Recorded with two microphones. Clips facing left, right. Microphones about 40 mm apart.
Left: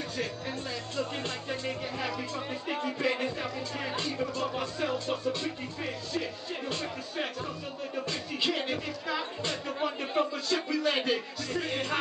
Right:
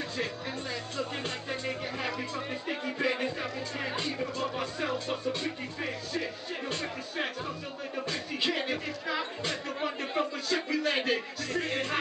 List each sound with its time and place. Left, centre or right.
0.9 s speech: centre